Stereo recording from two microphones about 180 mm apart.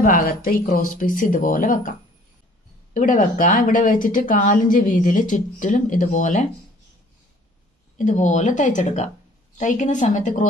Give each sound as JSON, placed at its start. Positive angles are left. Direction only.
{"t": 0.0, "sound": "speech", "side_deg": 50}
{"t": 8.0, "sound": "speech", "side_deg": 40}